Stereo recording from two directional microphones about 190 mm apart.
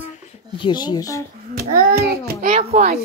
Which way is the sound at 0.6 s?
20° left (ahead or behind).